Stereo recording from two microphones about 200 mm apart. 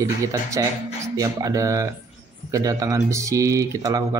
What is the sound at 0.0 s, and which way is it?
Speech, 15° right (ahead or behind).